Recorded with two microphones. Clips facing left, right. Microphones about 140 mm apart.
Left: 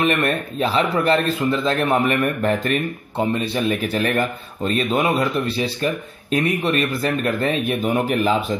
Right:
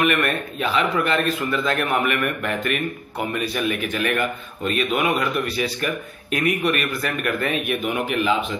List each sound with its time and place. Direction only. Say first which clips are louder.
0.0 s speech: left 1 dB; 30° left (ahead or behind)